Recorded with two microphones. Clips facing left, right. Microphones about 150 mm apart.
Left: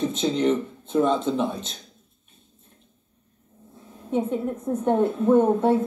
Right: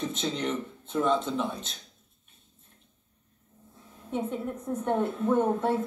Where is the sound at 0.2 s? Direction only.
20° left (ahead or behind).